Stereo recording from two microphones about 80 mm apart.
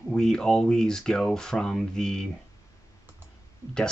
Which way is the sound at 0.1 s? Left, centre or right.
Centre.